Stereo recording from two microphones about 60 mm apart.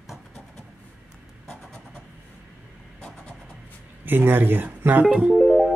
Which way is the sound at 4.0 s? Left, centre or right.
Right.